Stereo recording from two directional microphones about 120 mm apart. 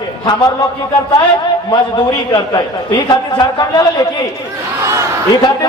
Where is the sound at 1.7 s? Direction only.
35° left (ahead or behind).